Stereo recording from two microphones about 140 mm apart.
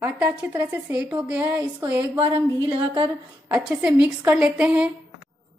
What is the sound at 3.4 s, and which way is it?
A woman's voice, 5° right (ahead or behind).